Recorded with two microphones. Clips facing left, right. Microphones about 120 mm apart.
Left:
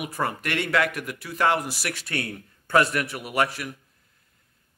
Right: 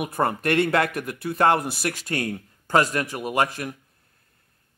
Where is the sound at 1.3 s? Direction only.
30° right (ahead or behind).